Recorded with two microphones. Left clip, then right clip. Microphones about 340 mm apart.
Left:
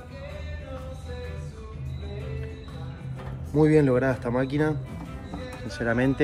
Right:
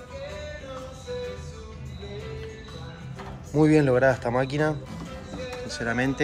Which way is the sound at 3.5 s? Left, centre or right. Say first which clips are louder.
Even; centre.